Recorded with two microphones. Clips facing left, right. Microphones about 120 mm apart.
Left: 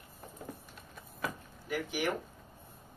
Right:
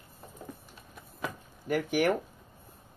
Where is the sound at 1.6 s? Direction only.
50° right (ahead or behind).